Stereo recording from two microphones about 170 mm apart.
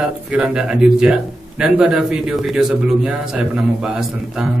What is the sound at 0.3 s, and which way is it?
A man's voice, 5° right (ahead or behind).